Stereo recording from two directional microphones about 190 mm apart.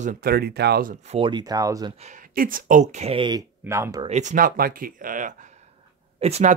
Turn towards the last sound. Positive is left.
turn(degrees=-35)  # may be behind; listen again after turning